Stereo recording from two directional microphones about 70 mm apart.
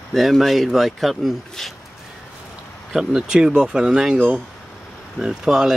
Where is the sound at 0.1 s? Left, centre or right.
Centre.